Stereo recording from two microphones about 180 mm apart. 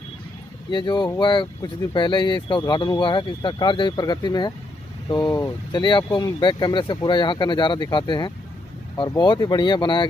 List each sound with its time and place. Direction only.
0.7 s speech: 25° left (ahead or behind)